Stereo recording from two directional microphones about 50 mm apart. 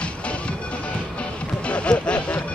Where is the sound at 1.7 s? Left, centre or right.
Left.